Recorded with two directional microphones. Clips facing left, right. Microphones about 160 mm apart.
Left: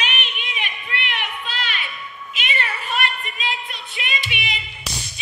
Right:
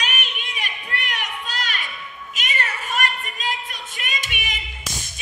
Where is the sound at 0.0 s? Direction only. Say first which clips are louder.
Left 1 dB; 40° right (ahead or behind).